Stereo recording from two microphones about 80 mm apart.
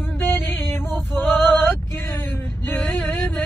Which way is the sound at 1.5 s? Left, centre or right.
Left.